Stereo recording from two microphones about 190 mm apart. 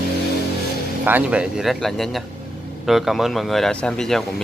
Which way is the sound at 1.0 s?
10° right (ahead or behind).